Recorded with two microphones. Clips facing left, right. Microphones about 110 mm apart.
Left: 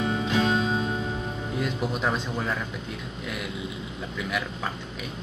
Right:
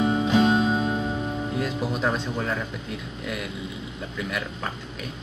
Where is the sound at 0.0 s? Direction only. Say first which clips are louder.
Right 5 dB; 20° right (ahead or behind).